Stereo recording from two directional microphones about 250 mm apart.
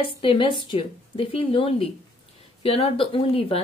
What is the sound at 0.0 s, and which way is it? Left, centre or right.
Speech, centre.